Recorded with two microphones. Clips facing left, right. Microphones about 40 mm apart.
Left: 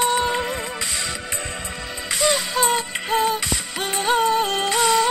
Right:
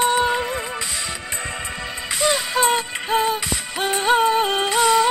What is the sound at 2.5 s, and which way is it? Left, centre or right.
Music, centre.